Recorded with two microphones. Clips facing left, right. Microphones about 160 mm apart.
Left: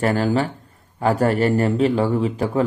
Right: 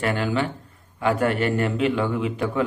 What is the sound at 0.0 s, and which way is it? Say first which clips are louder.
Speech: left 4 dB; 40° left (ahead or behind).